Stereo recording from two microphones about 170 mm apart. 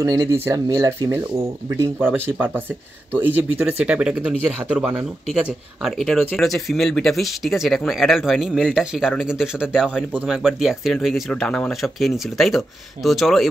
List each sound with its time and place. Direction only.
0.0 s speech: 20° right (ahead or behind); by 13.5 s centre (ahead or behind)